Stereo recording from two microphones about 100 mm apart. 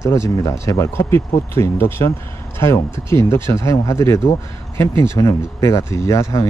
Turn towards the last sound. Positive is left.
turn(degrees=30)  # may be behind; listen again after turning